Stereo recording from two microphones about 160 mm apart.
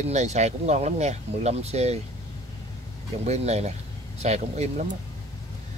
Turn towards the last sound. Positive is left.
turn(degrees=-50)  # may be behind; listen again after turning